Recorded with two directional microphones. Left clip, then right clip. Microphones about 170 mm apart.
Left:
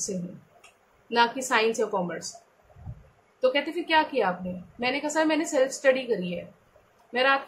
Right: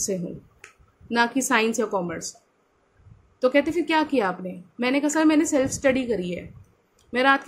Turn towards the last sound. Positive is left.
turn(degrees=-55)  # may be behind; listen again after turning